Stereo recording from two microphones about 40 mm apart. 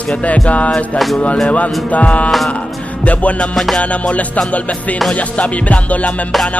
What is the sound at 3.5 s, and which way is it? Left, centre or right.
Speech, centre.